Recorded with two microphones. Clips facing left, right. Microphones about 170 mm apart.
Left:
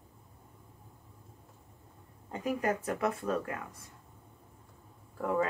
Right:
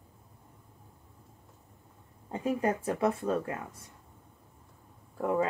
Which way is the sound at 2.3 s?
30° right (ahead or behind).